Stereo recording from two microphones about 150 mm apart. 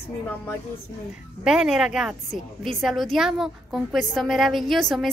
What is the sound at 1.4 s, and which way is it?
A woman's voice, 5° right (ahead or behind).